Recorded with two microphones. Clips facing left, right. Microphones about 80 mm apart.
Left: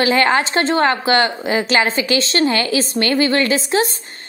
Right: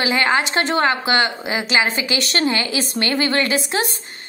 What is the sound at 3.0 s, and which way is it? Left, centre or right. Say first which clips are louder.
Speech: left 3 dB; right.